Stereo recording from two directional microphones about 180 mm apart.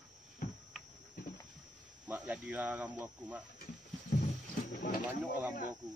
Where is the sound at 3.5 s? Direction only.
55° left (ahead or behind).